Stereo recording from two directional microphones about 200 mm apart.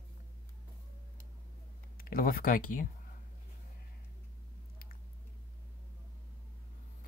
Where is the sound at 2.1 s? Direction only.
45° left (ahead or behind).